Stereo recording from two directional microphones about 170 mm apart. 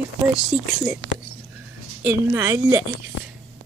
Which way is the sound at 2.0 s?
10° right (ahead or behind).